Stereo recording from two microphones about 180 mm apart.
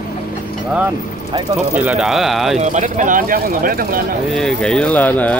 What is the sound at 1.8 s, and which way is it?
Speech, 5° right (ahead or behind).